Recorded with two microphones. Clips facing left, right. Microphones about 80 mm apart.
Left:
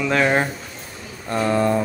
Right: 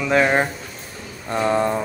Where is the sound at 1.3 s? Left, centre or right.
Centre.